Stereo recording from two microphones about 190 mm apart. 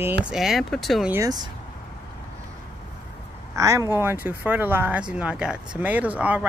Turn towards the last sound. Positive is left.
turn(degrees=-10)  # may be behind; listen again after turning